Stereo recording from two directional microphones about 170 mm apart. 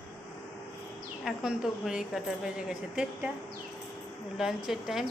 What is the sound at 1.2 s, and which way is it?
A woman's voice, 5° right (ahead or behind).